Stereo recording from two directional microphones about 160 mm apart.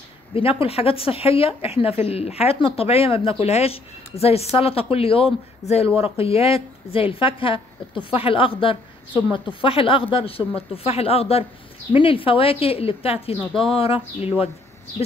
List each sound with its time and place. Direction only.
0.3 s speech: 35° left (ahead or behind)